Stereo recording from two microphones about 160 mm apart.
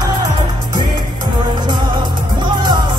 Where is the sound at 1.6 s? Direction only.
30° right (ahead or behind).